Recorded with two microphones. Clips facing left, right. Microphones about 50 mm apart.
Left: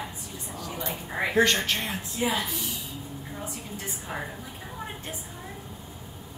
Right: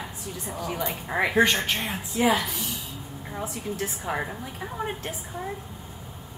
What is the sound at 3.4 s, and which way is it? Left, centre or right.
Speech, right.